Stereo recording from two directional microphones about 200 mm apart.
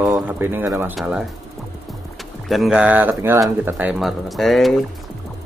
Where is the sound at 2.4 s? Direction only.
Centre (ahead or behind).